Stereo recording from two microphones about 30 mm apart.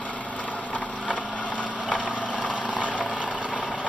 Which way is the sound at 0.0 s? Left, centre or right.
Left.